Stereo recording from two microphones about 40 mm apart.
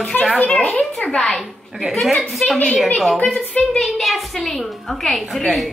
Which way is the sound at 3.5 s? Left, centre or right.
Left.